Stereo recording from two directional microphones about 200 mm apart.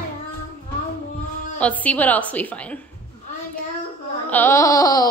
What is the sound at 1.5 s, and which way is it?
A woman's voice, 5° left (ahead or behind).